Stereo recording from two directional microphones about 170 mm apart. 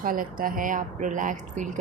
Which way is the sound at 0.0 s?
55° right (ahead or behind).